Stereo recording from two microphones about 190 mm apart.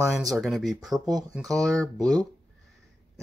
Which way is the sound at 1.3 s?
Centre (ahead or behind).